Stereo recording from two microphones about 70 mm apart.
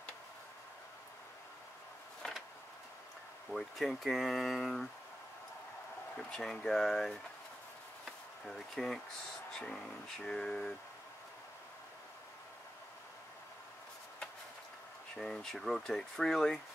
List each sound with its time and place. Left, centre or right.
2.2 s a sound: centre
3.4 s speech: centre
6.1 s speech: centre
8.0 s a sound: centre
9.5 s speech: centre
15.1 s speech: centre